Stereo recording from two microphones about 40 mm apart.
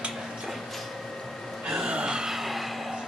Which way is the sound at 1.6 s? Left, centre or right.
Right.